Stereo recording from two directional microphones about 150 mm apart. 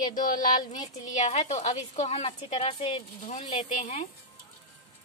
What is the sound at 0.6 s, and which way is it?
Speech, 25° left (ahead or behind).